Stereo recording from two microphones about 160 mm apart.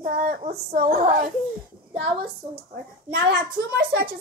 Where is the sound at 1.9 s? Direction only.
85° right.